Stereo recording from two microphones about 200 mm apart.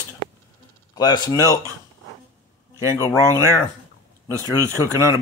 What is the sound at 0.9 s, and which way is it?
Speech, 20° left (ahead or behind).